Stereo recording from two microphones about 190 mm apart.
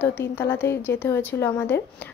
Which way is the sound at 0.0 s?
10° left (ahead or behind).